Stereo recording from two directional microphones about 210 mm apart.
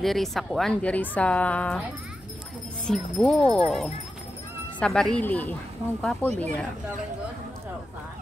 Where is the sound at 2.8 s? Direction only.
Centre (ahead or behind).